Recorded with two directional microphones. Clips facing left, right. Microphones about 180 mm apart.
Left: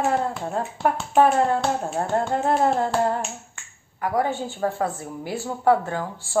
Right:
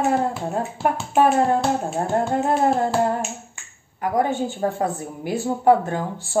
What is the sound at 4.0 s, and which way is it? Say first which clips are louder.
A woman's voice: right 3 dB; 20° right (ahead or behind).